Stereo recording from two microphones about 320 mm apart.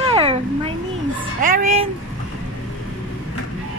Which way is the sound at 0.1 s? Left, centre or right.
Centre.